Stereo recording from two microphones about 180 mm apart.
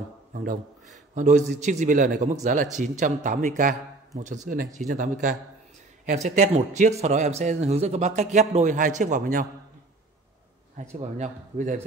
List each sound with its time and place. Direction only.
0.3 s speech: 50° right (ahead or behind)
11.0 s speech: 40° right (ahead or behind)